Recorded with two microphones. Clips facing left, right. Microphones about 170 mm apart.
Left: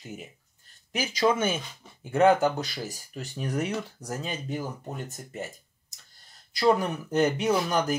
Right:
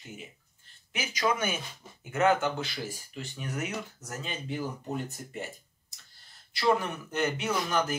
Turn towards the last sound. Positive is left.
turn(degrees=35)  # may be behind; listen again after turning